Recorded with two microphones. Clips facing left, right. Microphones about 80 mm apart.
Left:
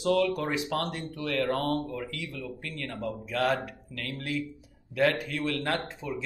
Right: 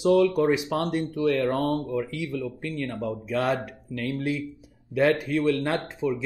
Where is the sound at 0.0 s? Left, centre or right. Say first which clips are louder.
Right 6 dB; centre.